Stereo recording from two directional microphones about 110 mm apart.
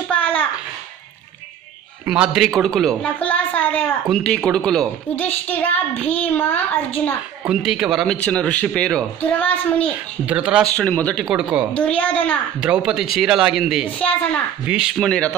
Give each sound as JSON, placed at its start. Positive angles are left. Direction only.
{"t": 0.1, "sound": "a sound", "side_deg": 10}
{"t": 2.0, "sound": "a woman's voice", "side_deg": -5}
{"t": 5.1, "sound": "a child's voice", "side_deg": 15}
{"t": 7.4, "sound": "a woman's voice", "side_deg": -5}
{"t": 8.2, "sound": "a child's voice", "side_deg": 10}
{"t": 10.2, "sound": "a man's voice", "side_deg": -10}
{"t": 10.6, "sound": "a child's voice", "side_deg": 10}
{"t": 11.2, "sound": "a man's voice", "side_deg": -10}
{"t": 11.7, "sound": "a child's voice", "side_deg": 10}
{"t": 12.5, "sound": "a woman's voice", "side_deg": -10}
{"t": 13.9, "sound": "a child's voice", "side_deg": 10}